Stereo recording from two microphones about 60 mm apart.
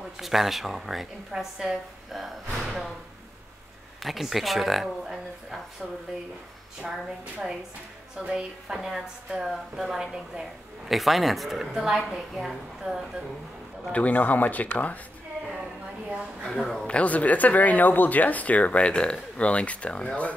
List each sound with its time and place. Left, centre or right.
0.2 s a woman's voice: centre
2.6 s slam: centre
4.0 s a woman's voice: centre
6.8 s a woman's voice: centre
13.9 s speech: left
16.4 s speech: centre
16.8 s speech: left